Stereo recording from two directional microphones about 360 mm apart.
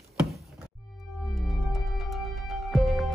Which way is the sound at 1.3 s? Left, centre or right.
Centre.